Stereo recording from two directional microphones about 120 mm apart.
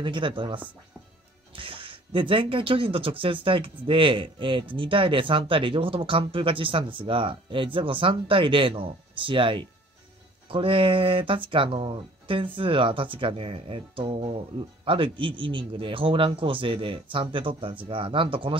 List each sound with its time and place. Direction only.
0.0 s speech: 40° right (ahead or behind)